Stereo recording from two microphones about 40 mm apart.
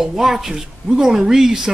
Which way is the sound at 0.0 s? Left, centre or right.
Centre.